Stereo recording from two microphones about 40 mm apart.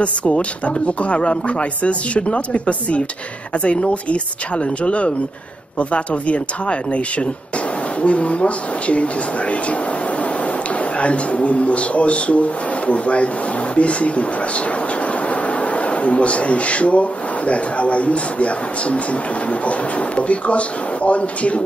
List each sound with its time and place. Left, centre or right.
0.0 s speech: left
11.0 s speech: left
15.2 s speech: left